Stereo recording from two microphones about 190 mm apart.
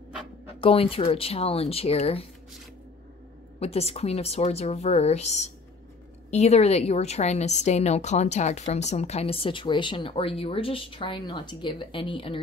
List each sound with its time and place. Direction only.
0.6 s a woman's voice: 30° left (ahead or behind)
3.5 s a woman's voice: 30° left (ahead or behind)